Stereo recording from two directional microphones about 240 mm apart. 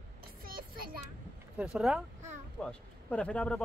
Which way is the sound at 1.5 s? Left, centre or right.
Centre.